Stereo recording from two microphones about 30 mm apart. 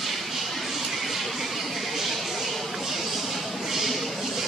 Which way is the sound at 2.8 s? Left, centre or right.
Centre.